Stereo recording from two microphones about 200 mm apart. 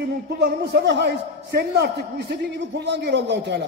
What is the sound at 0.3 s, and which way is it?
A man's voice, 55° right (ahead or behind).